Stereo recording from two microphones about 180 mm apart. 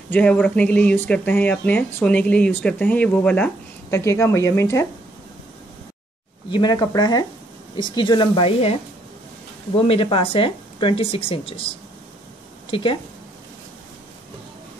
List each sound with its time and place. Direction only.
0.1 s speech: 5° left (ahead or behind)
6.5 s speech: 25° left (ahead or behind)
9.8 s speech: 30° left (ahead or behind)
12.7 s speech: 30° left (ahead or behind)